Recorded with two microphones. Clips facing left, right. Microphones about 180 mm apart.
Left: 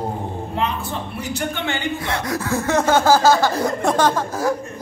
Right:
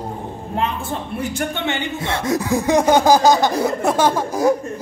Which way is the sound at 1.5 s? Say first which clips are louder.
Right 1 dB; 25° right (ahead or behind).